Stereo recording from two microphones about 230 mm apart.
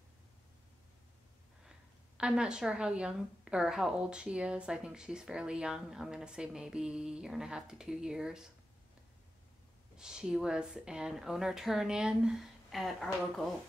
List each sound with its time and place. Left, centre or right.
2.1 s a woman's voice: centre
9.9 s a woman's voice: centre